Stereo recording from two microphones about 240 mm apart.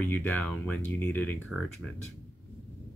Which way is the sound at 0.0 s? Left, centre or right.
Centre.